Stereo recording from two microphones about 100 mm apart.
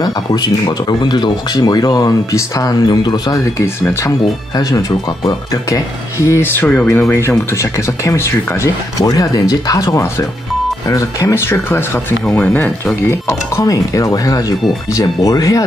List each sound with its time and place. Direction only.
0.0 s speech: 40° left (ahead or behind)
3.5 s speech: 25° left (ahead or behind)
4.6 s speech: 35° left (ahead or behind)